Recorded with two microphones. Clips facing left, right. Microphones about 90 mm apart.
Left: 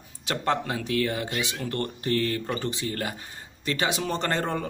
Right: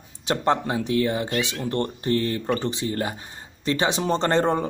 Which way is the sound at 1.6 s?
25° right (ahead or behind).